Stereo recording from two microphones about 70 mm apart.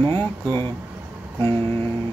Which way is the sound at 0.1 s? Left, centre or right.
Left.